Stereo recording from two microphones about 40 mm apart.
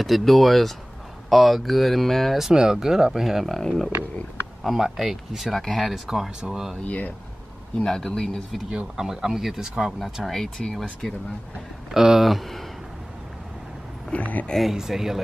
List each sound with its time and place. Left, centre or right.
0.0 s speech: centre
2.5 s speech: centre
3.5 s speech: centre
4.7 s speech: centre
6.8 s speech: left
7.8 s speech: centre
8.7 s speech: centre
10.2 s speech: centre
11.9 s speech: centre
12.3 s speech: centre
14.1 s speech: left
14.6 s speech: centre